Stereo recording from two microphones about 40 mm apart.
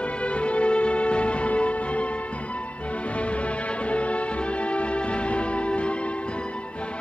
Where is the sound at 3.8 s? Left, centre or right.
Left.